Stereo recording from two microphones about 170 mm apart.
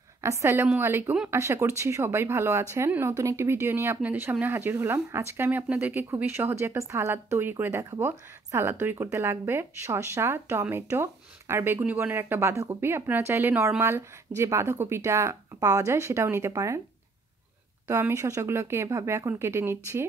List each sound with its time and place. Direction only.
0.2 s speech: 15° right (ahead or behind)
17.8 s speech: 15° right (ahead or behind)